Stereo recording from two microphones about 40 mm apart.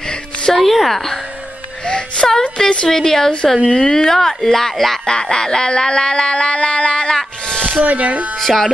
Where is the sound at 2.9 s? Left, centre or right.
Centre.